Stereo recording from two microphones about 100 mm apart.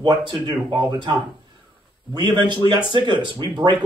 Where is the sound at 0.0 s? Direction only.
50° right (ahead or behind).